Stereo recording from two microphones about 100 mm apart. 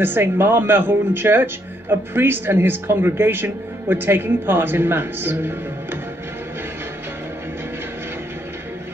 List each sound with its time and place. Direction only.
0.0 s speech: 20° right (ahead or behind)